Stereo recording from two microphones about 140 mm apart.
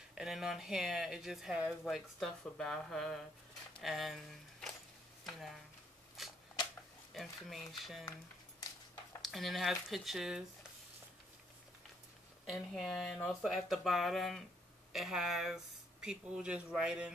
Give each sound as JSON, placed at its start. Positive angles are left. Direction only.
{"t": 0.1, "sound": "speech", "side_deg": -5}
{"t": 6.2, "sound": "a sound", "side_deg": 0}
{"t": 7.2, "sound": "speech", "side_deg": 0}
{"t": 9.2, "sound": "speech", "side_deg": 0}
{"t": 12.4, "sound": "speech", "side_deg": 0}